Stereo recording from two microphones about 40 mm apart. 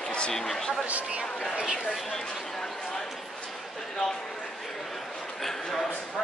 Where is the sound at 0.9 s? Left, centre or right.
Right.